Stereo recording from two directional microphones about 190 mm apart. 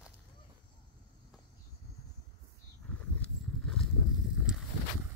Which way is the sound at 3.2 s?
5° left (ahead or behind).